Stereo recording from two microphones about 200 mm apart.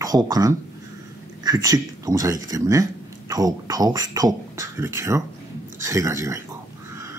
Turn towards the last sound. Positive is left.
turn(degrees=-15)  # may be behind; listen again after turning